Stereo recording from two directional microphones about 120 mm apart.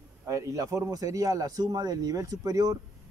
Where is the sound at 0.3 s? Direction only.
25° right (ahead or behind).